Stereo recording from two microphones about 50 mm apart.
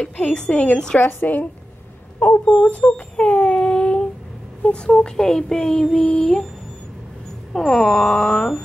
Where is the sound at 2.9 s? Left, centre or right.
Left.